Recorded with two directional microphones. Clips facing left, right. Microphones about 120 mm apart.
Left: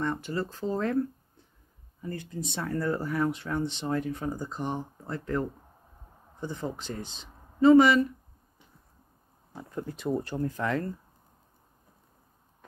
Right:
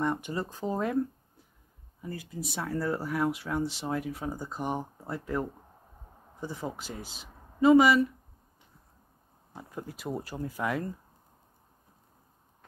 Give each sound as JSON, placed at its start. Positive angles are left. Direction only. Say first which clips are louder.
{"t": 0.0, "sound": "speech", "louder": "even", "side_deg": -15}
{"t": 2.0, "sound": "speech", "louder": "left 2 dB", "side_deg": -5}
{"t": 9.6, "sound": "speech", "louder": "left 4 dB", "side_deg": -5}